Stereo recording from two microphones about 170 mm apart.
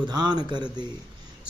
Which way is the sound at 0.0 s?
25° right (ahead or behind).